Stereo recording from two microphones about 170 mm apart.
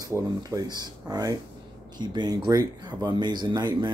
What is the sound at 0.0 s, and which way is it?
Speech, 20° right (ahead or behind).